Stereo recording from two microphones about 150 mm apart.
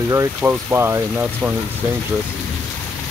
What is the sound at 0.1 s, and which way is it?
Speech, 20° right (ahead or behind).